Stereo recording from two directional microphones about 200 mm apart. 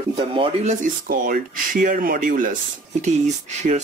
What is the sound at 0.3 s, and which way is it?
Speech, 25° right (ahead or behind).